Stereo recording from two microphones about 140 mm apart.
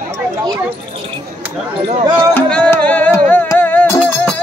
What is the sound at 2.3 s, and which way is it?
Music, 10° left (ahead or behind).